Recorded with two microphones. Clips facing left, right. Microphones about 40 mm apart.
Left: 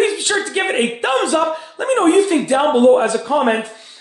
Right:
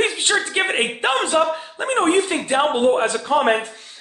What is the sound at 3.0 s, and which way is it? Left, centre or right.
Speech, right.